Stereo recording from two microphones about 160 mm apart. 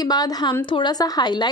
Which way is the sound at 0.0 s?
25° left (ahead or behind).